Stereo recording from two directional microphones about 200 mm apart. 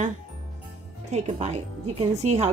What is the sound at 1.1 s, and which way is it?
Speech, 35° right (ahead or behind).